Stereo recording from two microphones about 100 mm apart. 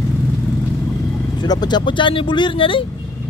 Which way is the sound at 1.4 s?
45° left (ahead or behind).